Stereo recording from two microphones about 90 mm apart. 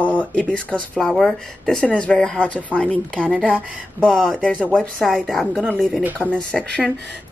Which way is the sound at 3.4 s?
15° right (ahead or behind).